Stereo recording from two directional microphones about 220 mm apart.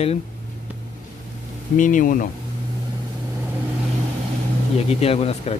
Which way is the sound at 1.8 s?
35° left (ahead or behind).